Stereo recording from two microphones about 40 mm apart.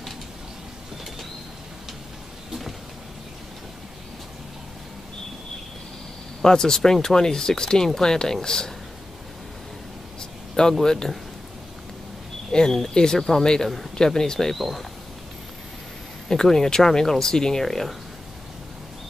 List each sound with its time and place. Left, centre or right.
6.4 s speech: centre
10.5 s speech: centre
12.4 s speech: centre
14.6 s speech: centre
16.3 s speech: centre